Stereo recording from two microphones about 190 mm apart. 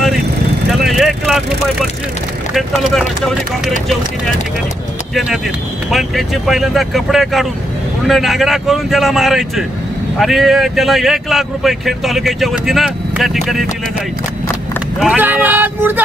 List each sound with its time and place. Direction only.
0.8 s vehicle: centre (ahead or behind)
2.5 s speech: centre (ahead or behind)
5.9 s speech: centre (ahead or behind)
15.0 s speech: 5° right (ahead or behind)